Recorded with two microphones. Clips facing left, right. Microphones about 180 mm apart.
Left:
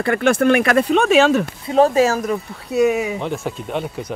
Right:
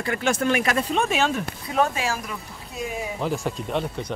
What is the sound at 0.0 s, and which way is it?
Speech, 60° left (ahead or behind).